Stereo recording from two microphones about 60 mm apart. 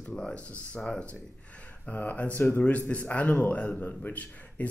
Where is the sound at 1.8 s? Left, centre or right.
Left.